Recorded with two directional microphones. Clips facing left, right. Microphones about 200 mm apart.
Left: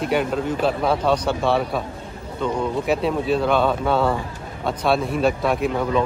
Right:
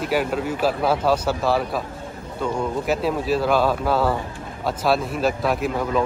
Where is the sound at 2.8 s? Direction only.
Centre (ahead or behind).